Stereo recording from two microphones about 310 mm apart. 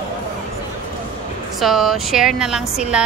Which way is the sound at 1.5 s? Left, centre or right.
Centre.